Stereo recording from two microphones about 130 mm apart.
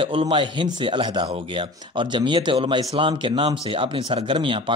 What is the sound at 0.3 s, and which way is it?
Speech, 40° right (ahead or behind).